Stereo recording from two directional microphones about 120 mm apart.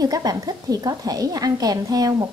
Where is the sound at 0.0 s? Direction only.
30° right (ahead or behind).